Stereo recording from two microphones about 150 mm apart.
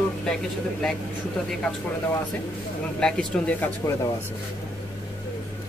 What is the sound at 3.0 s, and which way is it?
Speech, 5° left (ahead or behind).